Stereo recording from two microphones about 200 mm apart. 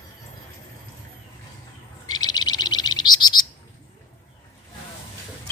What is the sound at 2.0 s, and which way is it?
Bird, 20° left (ahead or behind).